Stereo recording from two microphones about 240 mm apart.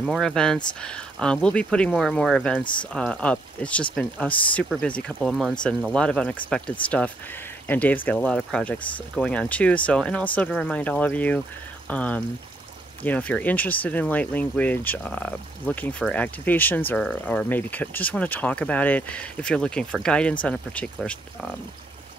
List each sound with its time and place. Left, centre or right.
0.0 s speech: centre
2.6 s speech: centre
2.9 s speech: centre